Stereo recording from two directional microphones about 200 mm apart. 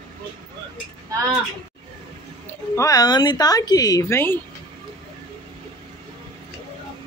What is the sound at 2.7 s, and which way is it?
A man's voice, 15° left (ahead or behind).